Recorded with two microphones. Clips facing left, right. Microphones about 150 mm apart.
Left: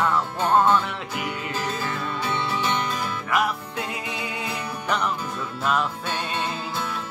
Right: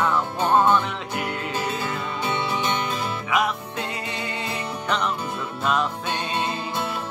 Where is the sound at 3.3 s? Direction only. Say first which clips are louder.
Even; 5° left (ahead or behind).